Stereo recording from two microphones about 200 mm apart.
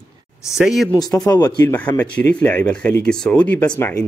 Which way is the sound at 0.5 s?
Centre (ahead or behind).